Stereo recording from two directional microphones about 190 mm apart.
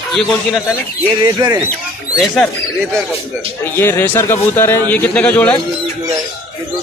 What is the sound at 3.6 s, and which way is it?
Speech, 10° left (ahead or behind).